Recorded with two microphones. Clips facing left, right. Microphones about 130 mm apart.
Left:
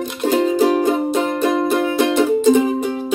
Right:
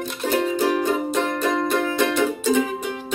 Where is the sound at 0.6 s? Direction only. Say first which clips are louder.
Left 6 dB; 35° left (ahead or behind).